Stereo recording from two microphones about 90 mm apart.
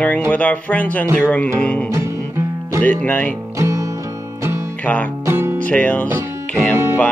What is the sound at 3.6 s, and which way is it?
Music, 35° right (ahead or behind).